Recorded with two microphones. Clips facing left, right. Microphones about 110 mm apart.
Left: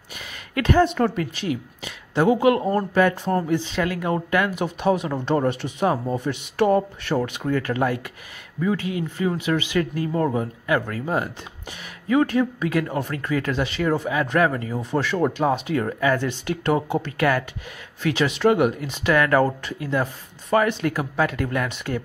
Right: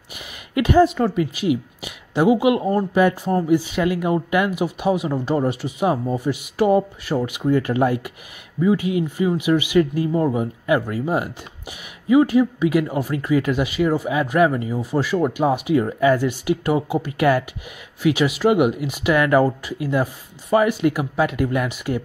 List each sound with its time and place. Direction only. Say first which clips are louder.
0.1 s a sound: right 4 dB; 15° right (ahead or behind)
0.8 s speech: right 2 dB; 5° right (ahead or behind)
17.2 s speech: right 5 dB; 20° right (ahead or behind)